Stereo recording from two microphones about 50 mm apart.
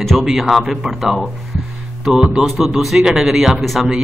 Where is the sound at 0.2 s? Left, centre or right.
Centre.